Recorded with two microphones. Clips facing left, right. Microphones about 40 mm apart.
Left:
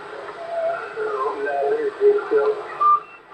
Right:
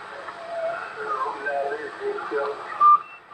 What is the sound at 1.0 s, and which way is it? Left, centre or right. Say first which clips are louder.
Radio: left 3 dB; centre.